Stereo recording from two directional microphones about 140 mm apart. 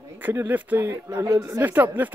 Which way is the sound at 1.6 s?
10° right (ahead or behind).